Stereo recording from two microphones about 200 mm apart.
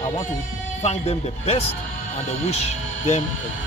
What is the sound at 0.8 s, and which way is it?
A man's voice, 30° left (ahead or behind).